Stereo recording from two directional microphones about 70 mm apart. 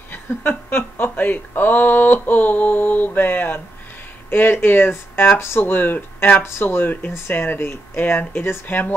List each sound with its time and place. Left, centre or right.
0.1 s speech: left